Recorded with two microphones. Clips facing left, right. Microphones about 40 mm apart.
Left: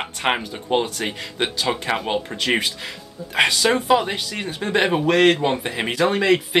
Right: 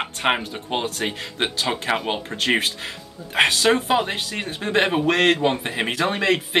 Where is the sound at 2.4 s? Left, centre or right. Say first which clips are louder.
Even; right.